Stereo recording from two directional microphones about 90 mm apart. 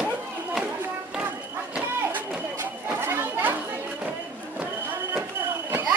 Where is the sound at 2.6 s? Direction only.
20° right (ahead or behind).